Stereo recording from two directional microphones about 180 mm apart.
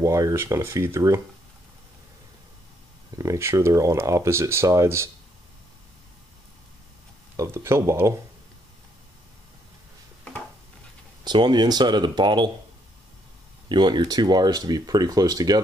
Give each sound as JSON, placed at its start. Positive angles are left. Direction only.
{"t": 0.0, "sound": "speech", "side_deg": -15}
{"t": 3.1, "sound": "speech", "side_deg": -20}
{"t": 7.3, "sound": "speech", "side_deg": -15}
{"t": 11.2, "sound": "speech", "side_deg": -25}
{"t": 13.7, "sound": "speech", "side_deg": -25}